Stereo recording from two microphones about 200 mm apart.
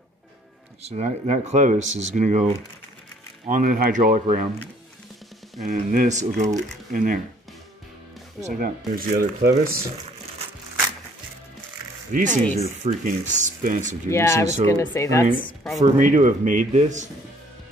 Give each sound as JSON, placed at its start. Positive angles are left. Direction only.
{"t": 0.8, "sound": "speech", "side_deg": -35}
{"t": 5.7, "sound": "speech", "side_deg": -40}
{"t": 8.5, "sound": "speech", "side_deg": -40}
{"t": 12.1, "sound": "speech", "side_deg": -40}
{"t": 14.1, "sound": "speech", "side_deg": 15}
{"t": 14.4, "sound": "speech", "side_deg": -35}
{"t": 14.7, "sound": "speech", "side_deg": 10}
{"t": 15.8, "sound": "speech", "side_deg": -40}